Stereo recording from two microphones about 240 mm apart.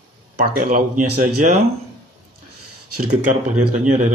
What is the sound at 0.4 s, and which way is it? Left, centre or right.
Speech, right.